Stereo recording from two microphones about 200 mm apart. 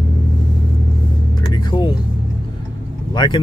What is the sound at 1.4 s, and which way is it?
Vehicle, 20° left (ahead or behind).